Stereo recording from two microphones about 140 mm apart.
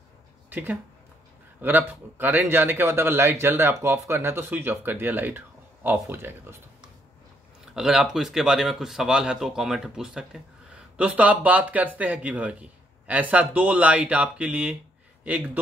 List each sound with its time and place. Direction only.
0.5 s speech: 10° right (ahead or behind)
7.6 s speech: 5° right (ahead or behind)